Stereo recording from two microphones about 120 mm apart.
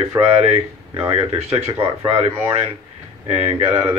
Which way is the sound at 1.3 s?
55° right (ahead or behind).